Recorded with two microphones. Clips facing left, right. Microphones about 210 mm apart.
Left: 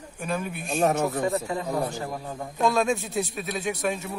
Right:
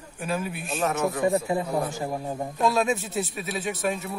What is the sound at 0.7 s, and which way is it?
Speech, 40° left (ahead or behind).